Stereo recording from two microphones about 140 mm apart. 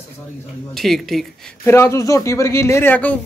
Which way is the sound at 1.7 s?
20° left (ahead or behind).